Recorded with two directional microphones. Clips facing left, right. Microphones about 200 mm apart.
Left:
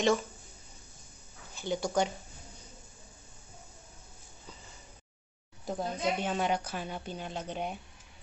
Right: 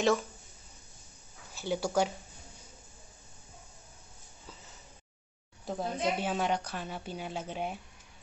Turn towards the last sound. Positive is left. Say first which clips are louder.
# even
turn(degrees=-5)  # may be behind; listen again after turning